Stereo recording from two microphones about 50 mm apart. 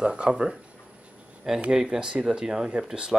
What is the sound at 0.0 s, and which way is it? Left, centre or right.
Speech, centre.